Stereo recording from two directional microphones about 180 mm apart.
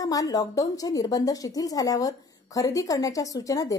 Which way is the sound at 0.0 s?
20° left (ahead or behind).